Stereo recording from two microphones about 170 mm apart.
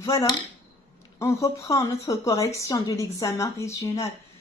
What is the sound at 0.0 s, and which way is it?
Speech, 20° left (ahead or behind).